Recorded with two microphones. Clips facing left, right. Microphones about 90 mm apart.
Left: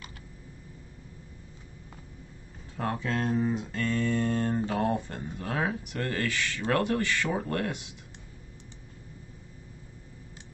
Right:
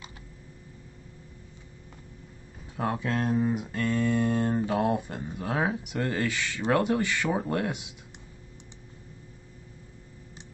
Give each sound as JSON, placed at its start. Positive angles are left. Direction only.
{"t": 2.8, "sound": "speech", "side_deg": -15}